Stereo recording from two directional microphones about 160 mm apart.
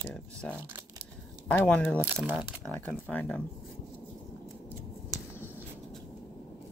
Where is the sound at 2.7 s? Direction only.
10° left (ahead or behind).